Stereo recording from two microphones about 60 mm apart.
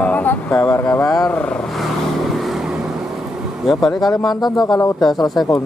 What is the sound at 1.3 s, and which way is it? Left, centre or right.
Speech, centre.